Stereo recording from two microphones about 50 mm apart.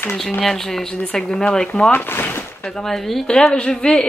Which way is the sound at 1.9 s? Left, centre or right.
Left.